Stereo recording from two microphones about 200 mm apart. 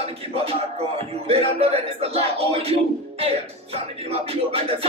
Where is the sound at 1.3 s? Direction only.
30° right (ahead or behind).